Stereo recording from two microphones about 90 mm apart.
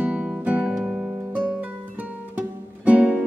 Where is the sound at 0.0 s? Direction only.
10° right (ahead or behind).